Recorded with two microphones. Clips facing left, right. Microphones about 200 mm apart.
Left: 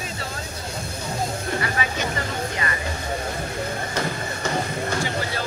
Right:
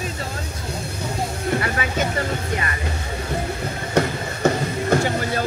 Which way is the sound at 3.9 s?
55° right (ahead or behind).